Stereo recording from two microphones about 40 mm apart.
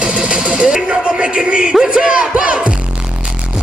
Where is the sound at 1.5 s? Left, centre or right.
Right.